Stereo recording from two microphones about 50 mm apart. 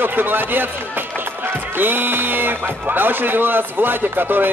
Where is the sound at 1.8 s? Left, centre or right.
Right.